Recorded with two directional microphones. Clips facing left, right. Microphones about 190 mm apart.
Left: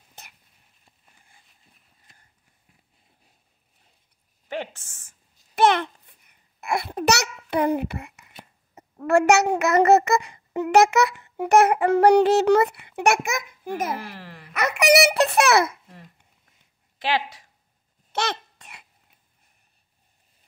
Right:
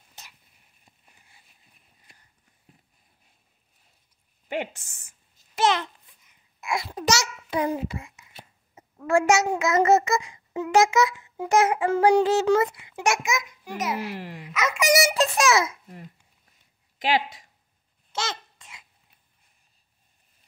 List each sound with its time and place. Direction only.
0.2 s a sound: 55° left (ahead or behind)
4.5 s speech: 15° right (ahead or behind)
5.6 s babbling: 60° left (ahead or behind)
9.0 s child singing: 65° left (ahead or behind)
14.1 s wail: 15° right (ahead or behind)
14.5 s child singing: 65° left (ahead or behind)
17.0 s speech: 15° right (ahead or behind)
18.1 s babbling: 60° left (ahead or behind)